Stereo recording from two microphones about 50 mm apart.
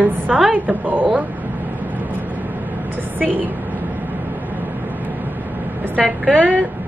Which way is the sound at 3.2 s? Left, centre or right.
Right.